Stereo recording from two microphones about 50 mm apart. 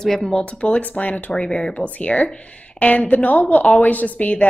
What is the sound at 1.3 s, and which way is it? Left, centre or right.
A woman's voice, centre.